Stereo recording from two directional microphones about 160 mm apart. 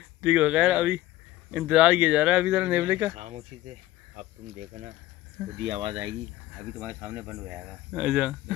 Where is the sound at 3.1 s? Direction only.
40° right (ahead or behind).